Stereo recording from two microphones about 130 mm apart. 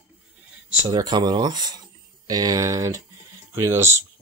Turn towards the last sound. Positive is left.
turn(degrees=-20)  # may be behind; listen again after turning